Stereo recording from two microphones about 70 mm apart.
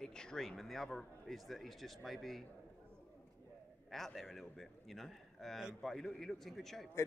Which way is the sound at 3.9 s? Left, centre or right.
Centre.